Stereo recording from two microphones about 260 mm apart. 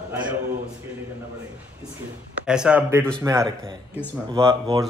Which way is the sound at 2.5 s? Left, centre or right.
Centre.